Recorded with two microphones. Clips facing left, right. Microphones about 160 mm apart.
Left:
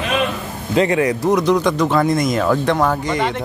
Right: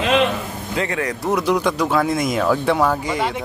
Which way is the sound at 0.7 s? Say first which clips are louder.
Left 8 dB; 20° left (ahead or behind).